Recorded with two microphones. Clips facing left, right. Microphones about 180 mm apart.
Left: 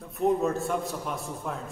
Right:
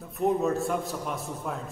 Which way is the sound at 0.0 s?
Centre (ahead or behind).